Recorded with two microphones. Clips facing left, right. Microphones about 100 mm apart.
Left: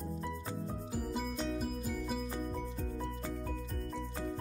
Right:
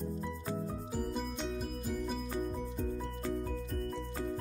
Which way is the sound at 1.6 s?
Centre (ahead or behind).